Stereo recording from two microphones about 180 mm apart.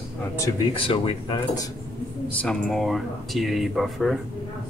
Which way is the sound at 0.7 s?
30° left (ahead or behind).